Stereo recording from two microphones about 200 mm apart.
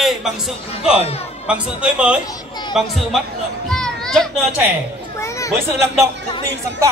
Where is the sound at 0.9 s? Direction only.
30° left (ahead or behind).